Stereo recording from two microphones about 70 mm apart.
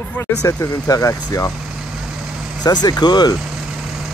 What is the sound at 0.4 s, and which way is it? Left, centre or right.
Speech, left.